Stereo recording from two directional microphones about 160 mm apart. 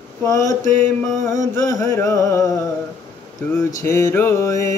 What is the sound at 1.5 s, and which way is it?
Music, 20° left (ahead or behind).